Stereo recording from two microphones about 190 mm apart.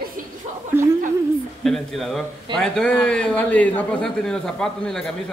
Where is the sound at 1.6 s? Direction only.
Centre (ahead or behind).